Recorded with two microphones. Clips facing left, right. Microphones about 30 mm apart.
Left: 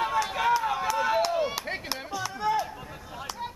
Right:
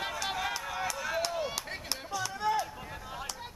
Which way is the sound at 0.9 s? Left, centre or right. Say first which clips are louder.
Left 9 dB; left.